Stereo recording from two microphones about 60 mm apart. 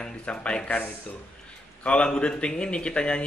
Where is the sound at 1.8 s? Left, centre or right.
Centre.